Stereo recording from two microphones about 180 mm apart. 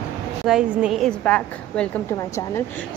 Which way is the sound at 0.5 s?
5° right (ahead or behind).